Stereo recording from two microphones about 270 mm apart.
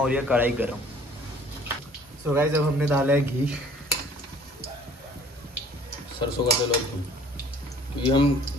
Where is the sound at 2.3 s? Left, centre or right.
Centre.